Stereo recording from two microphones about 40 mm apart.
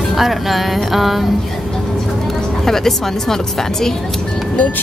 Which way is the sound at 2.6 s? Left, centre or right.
Centre.